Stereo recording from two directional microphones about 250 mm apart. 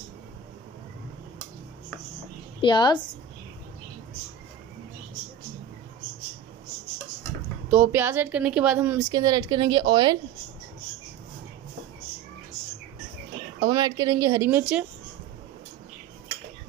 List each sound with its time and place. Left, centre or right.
2.6 s a woman's voice: centre
7.7 s a woman's voice: centre
13.6 s a woman's voice: centre